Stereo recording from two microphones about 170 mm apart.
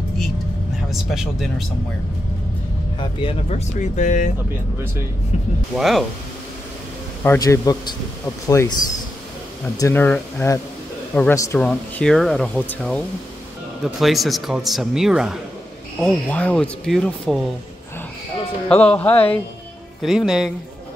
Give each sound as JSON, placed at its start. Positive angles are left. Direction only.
{"t": 0.8, "sound": "speech", "side_deg": 0}
{"t": 3.0, "sound": "speech", "side_deg": 30}
{"t": 5.8, "sound": "speech", "side_deg": 0}
{"t": 7.2, "sound": "a man's voice", "side_deg": 20}
{"t": 9.8, "sound": "speech", "side_deg": 15}
{"t": 11.6, "sound": "speech", "side_deg": 5}
{"t": 16.0, "sound": "speech", "side_deg": 10}
{"t": 18.7, "sound": "speech", "side_deg": 5}
{"t": 20.0, "sound": "speech", "side_deg": 0}